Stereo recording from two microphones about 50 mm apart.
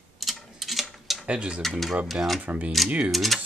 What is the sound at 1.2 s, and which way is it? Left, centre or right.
Speech, right.